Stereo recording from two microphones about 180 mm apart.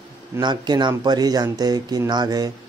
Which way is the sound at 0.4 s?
25° right (ahead or behind).